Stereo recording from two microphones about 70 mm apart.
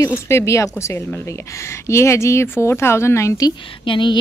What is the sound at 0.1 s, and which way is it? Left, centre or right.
A woman's voice, left.